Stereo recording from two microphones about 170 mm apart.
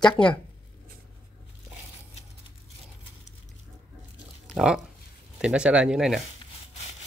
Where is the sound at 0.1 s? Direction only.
5° left (ahead or behind).